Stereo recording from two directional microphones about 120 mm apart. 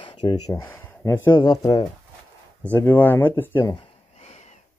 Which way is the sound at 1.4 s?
40° left (ahead or behind).